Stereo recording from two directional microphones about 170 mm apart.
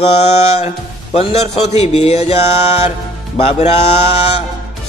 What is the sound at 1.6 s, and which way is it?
Speech, 40° left (ahead or behind).